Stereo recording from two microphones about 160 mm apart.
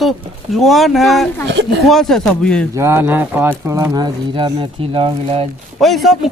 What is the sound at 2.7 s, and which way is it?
Speech, 15° right (ahead or behind).